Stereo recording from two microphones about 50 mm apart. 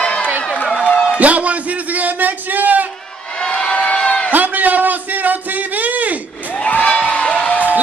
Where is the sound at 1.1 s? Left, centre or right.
Right.